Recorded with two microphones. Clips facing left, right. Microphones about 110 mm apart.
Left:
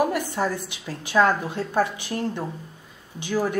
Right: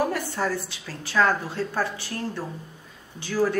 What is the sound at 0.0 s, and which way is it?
A woman's voice, 15° left (ahead or behind).